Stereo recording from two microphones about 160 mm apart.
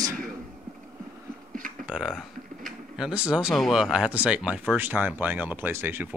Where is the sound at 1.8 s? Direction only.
Centre (ahead or behind).